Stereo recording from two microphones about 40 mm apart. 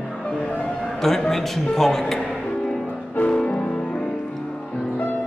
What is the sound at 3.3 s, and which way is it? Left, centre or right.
Music, left.